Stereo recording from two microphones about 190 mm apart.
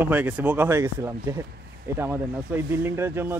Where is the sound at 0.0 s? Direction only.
10° right (ahead or behind).